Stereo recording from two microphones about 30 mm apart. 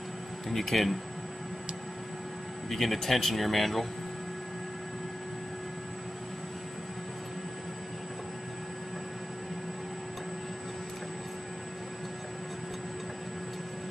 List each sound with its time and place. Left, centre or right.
0.5 s speech: centre
2.7 s speech: centre